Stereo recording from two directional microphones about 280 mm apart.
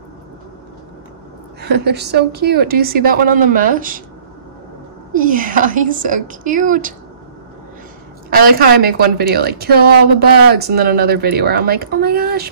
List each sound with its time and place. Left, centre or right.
1.6 s a woman's voice: right
5.1 s a woman's voice: right
8.3 s a woman's voice: right